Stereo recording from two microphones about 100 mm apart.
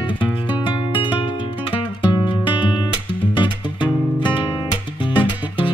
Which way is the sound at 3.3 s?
55° left (ahead or behind).